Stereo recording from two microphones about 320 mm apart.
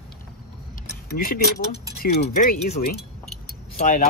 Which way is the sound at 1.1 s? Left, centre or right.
Left.